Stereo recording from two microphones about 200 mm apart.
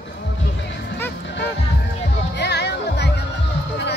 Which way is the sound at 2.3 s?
60° left (ahead or behind).